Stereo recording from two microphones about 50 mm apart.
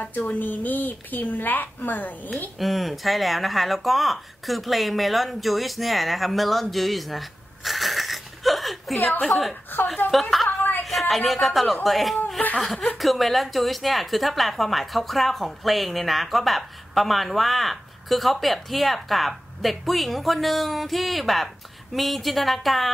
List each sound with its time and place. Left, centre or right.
0.3 s a woman's voice: left
2.6 s speech: centre
8.9 s a woman's voice: left
9.2 s a woman's voice: centre
10.0 s a woman's voice: left
10.8 s a woman's voice: centre